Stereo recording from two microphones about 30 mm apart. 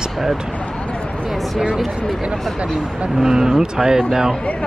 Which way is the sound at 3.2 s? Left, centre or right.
Right.